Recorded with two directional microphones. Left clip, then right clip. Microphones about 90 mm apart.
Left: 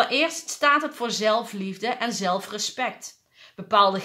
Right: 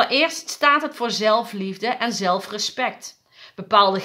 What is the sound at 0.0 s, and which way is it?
A woman's voice, 25° right (ahead or behind).